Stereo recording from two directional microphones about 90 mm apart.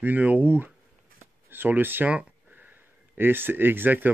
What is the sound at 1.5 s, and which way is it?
Speech, 20° right (ahead or behind).